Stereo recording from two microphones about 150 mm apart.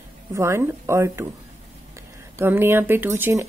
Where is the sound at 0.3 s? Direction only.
20° right (ahead or behind).